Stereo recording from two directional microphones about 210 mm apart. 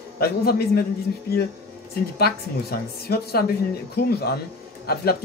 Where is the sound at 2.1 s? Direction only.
50° left (ahead or behind).